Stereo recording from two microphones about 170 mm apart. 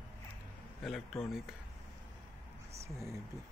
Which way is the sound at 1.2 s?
Centre (ahead or behind).